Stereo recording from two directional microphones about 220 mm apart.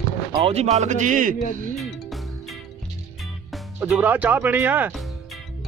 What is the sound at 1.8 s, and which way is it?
Music, centre (ahead or behind).